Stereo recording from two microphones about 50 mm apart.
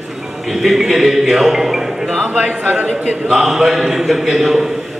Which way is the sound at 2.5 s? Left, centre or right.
Right.